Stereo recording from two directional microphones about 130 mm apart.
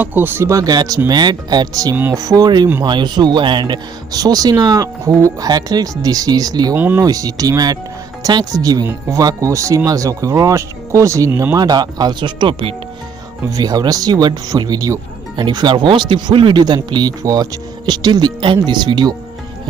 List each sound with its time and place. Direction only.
0.0 s speech: 15° right (ahead or behind)
6.8 s speech: 15° right (ahead or behind)
7.1 s speech: 30° right (ahead or behind)
13.5 s speech: 30° right (ahead or behind)